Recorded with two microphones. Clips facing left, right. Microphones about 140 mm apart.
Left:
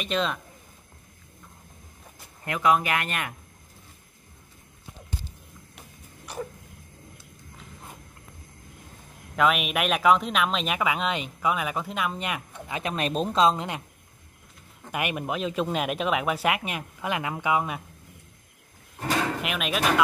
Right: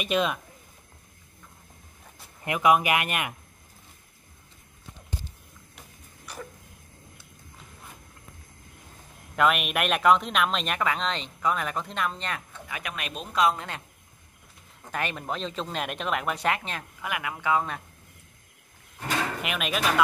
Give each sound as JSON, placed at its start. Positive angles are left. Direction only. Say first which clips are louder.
{"t": 0.0, "sound": "speech", "louder": "right 2 dB", "side_deg": -10}
{"t": 2.4, "sound": "speech", "louder": "right 1 dB", "side_deg": -15}
{"t": 9.3, "sound": "speech", "louder": "even", "side_deg": 0}
{"t": 12.6, "sound": "speech", "louder": "left 9 dB", "side_deg": 25}
{"t": 13.4, "sound": "speech", "louder": "left 1 dB", "side_deg": 20}
{"t": 14.9, "sound": "speech", "louder": "left 2 dB", "side_deg": 15}
{"t": 17.1, "sound": "speech", "louder": "left 1 dB", "side_deg": 25}
{"t": 19.4, "sound": "speech", "louder": "left 1 dB", "side_deg": 0}